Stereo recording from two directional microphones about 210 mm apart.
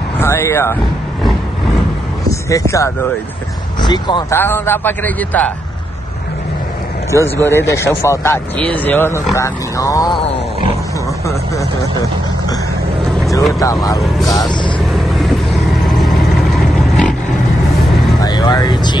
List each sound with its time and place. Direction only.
0.2 s speech: 10° left (ahead or behind)
2.5 s speech: 15° left (ahead or behind)
4.4 s speech: 10° left (ahead or behind)
7.1 s speech: 10° left (ahead or behind)
13.0 s vehicle: centre (ahead or behind)
14.9 s vehicle: centre (ahead or behind)
18.2 s speech: 20° left (ahead or behind)